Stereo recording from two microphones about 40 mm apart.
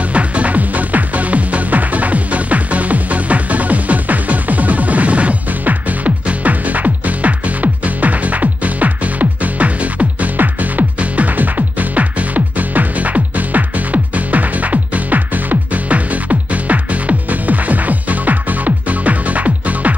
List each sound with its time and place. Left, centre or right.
0.1 s music: right
10.3 s music: right